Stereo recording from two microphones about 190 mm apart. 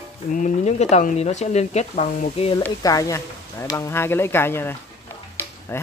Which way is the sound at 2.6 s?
20° left (ahead or behind).